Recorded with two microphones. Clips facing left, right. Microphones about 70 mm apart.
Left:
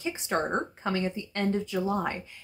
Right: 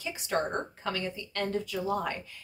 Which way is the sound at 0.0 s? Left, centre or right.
Left.